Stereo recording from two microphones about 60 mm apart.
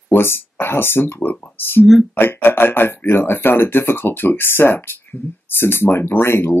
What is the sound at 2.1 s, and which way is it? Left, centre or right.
Speech, left.